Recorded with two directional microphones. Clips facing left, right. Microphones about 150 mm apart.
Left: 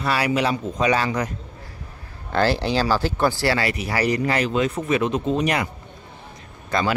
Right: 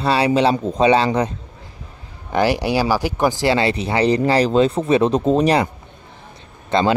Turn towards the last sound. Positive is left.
turn(degrees=-25)  # may be behind; listen again after turning